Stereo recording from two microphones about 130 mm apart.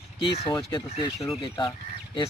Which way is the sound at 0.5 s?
35° left (ahead or behind).